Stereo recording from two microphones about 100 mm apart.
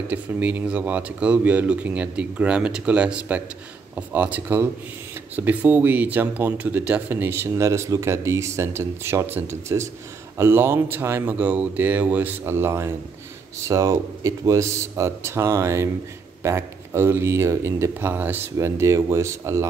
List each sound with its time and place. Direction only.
0.1 s speech: 15° right (ahead or behind)